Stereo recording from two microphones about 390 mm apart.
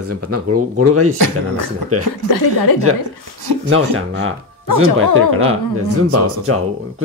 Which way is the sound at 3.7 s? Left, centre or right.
Right.